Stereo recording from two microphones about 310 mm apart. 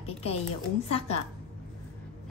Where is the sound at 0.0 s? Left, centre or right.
Centre.